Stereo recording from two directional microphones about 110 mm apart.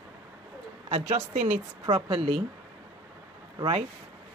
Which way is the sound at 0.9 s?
85° right.